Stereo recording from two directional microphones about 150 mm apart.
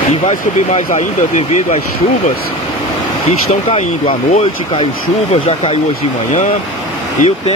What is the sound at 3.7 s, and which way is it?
Speech, 45° left (ahead or behind).